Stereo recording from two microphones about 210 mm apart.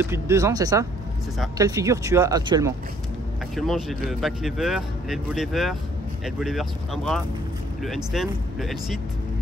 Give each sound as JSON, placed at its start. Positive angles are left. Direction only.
{"t": 0.0, "sound": "speech", "side_deg": -10}
{"t": 3.5, "sound": "speech", "side_deg": 0}